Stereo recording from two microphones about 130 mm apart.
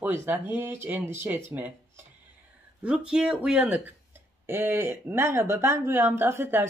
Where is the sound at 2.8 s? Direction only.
10° right (ahead or behind).